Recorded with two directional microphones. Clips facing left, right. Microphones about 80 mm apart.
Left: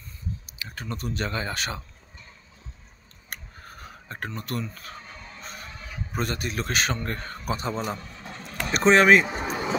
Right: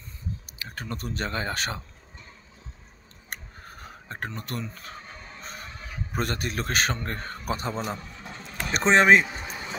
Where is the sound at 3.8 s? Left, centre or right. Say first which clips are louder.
Even; right.